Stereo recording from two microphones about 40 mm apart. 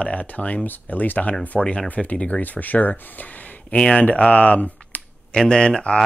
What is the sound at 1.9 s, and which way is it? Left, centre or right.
Speech, left.